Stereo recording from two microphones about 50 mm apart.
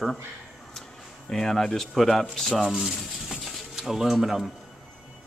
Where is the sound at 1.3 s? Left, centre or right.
Centre.